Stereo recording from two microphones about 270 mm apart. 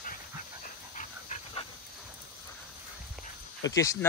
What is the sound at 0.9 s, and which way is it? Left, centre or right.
Dog, left.